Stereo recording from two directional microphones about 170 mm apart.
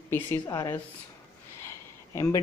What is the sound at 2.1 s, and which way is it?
Speech, 20° left (ahead or behind).